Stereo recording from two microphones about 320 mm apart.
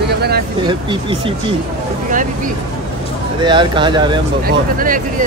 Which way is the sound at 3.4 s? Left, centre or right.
Centre.